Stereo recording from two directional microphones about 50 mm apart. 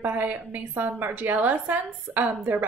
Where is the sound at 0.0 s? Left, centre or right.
Right.